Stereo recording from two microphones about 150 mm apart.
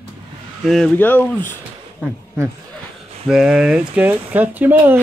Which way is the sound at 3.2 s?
5° right (ahead or behind).